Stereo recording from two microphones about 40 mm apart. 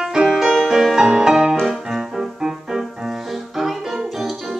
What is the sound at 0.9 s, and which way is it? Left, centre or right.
Music, centre.